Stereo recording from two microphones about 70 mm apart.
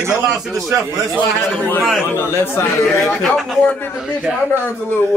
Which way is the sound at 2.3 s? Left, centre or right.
Left.